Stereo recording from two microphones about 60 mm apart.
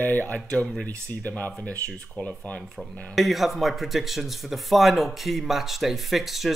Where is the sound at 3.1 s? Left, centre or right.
Centre.